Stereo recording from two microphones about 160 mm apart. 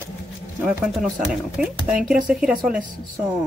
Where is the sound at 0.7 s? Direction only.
5° right (ahead or behind).